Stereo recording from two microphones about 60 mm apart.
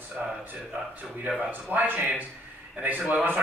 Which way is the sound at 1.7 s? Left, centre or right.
Right.